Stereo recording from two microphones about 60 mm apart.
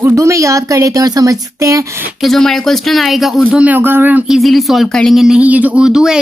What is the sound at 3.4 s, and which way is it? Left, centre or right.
Speech, right.